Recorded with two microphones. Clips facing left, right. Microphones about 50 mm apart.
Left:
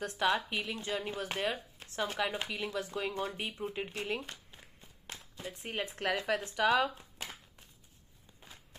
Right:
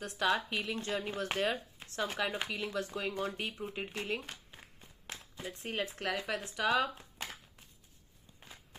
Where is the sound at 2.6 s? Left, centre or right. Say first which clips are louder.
Left 1 dB; left.